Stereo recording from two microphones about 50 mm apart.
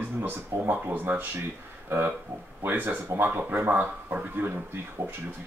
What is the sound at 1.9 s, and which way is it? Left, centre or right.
Speech, right.